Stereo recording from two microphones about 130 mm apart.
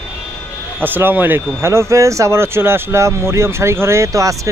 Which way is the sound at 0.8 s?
15° right (ahead or behind).